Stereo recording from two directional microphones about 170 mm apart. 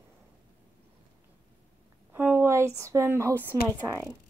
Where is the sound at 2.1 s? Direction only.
10° right (ahead or behind).